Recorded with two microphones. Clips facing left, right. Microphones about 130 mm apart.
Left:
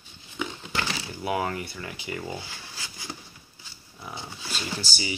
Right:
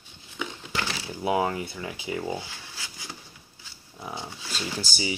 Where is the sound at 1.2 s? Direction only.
20° right (ahead or behind).